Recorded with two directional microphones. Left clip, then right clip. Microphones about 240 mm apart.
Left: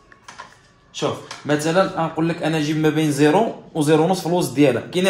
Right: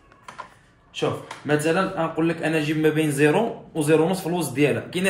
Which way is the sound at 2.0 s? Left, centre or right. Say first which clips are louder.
Left 2 dB; left.